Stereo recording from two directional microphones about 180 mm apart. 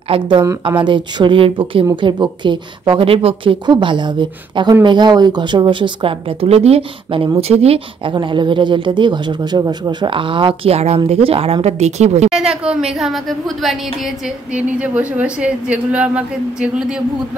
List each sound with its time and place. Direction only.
0.1 s a woman's voice: 25° right (ahead or behind)
12.6 s a woman's voice: 5° right (ahead or behind)